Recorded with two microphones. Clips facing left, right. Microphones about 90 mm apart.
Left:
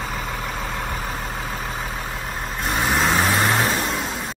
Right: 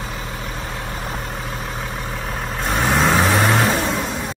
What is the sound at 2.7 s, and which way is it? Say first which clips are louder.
Vehicle: right 3 dB; centre (ahead or behind).